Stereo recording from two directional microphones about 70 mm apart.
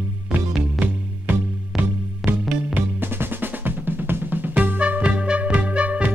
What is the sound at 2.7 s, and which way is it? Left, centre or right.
Drum, right.